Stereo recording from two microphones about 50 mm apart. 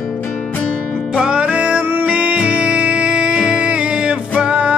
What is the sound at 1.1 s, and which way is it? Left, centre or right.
Music, right.